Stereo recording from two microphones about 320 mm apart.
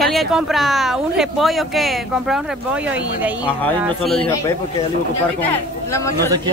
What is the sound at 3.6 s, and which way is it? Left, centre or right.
Speech, centre.